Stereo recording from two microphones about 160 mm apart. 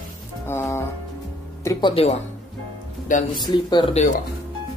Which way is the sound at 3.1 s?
55° left (ahead or behind).